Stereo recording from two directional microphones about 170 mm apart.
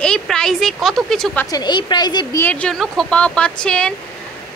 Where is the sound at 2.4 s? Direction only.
10° left (ahead or behind).